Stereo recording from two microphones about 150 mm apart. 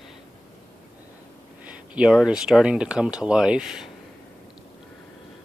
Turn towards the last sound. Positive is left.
turn(degrees=-5)  # may be behind; listen again after turning